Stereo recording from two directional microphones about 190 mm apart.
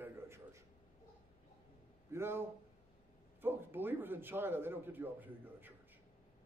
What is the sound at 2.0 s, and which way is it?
A man's voice, 15° right (ahead or behind).